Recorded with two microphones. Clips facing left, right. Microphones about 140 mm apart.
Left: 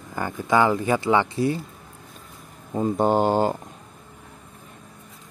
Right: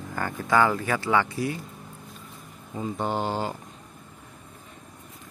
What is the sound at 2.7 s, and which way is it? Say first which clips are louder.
Speech: left 8 dB; 45° left (ahead or behind).